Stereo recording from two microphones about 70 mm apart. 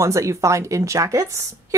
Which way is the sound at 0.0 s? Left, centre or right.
Right.